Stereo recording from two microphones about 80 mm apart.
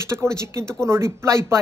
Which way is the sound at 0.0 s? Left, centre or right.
Right.